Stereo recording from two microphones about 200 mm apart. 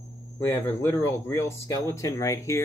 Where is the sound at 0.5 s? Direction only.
15° left (ahead or behind).